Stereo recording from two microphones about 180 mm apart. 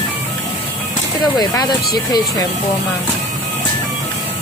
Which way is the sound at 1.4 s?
20° left (ahead or behind).